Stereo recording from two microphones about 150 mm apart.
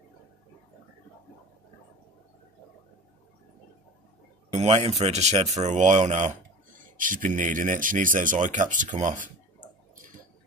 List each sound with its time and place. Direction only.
4.5 s speech: 45° right (ahead or behind)